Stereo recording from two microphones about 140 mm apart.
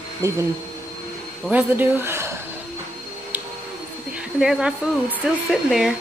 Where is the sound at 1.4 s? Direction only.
10° right (ahead or behind).